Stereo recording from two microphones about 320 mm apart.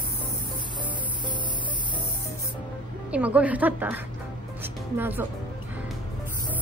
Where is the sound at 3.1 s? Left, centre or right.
Centre.